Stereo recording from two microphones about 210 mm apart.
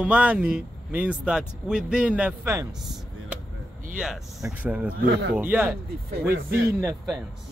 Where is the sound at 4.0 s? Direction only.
Centre (ahead or behind).